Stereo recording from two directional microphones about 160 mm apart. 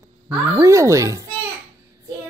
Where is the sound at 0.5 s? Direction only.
20° right (ahead or behind).